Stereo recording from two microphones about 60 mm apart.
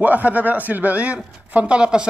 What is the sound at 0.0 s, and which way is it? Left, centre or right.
Speech, right.